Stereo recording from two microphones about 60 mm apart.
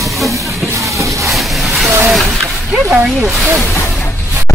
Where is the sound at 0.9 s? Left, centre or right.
Right.